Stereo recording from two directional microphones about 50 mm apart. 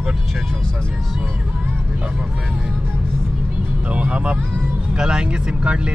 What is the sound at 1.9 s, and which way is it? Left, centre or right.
Speech, right.